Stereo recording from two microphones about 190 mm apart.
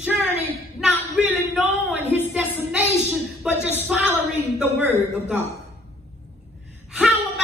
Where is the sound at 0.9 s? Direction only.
Centre (ahead or behind).